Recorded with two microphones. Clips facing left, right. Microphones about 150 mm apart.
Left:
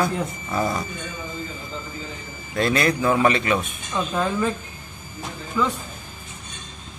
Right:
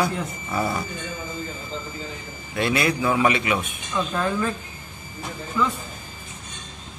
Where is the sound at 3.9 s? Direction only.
20° left (ahead or behind).